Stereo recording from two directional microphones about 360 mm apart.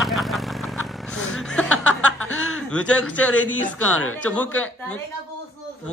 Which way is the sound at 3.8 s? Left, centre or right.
Left.